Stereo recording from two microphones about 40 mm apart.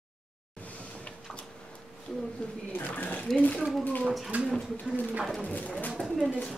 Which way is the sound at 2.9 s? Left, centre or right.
Left.